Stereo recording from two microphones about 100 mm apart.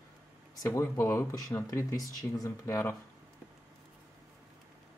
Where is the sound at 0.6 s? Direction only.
25° left (ahead or behind).